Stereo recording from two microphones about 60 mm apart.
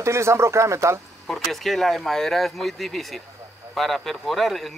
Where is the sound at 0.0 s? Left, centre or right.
Right.